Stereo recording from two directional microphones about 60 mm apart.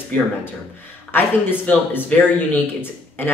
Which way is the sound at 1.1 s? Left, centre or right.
Left.